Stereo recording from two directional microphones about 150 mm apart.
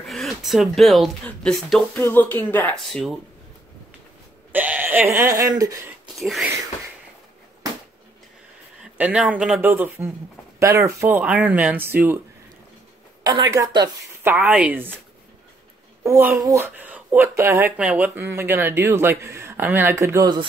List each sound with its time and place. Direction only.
0.0 s speech: centre (ahead or behind)
2.0 s speech: 15° left (ahead or behind)
4.5 s speech: 10° right (ahead or behind)
6.1 s speech: centre (ahead or behind)
8.9 s speech: 10° right (ahead or behind)
13.2 s speech: 25° right (ahead or behind); by 14.9 s 10° right (ahead or behind)
16.0 s a child's voice: 20° right (ahead or behind)